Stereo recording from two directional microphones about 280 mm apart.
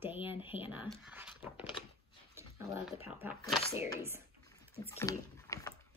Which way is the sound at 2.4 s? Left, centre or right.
Centre.